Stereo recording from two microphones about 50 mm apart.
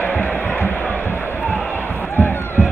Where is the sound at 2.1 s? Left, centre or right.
Left.